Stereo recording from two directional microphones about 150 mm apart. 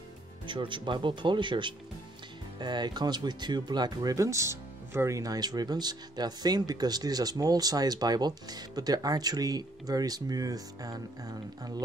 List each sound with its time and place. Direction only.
0.5 s speech: 35° right (ahead or behind)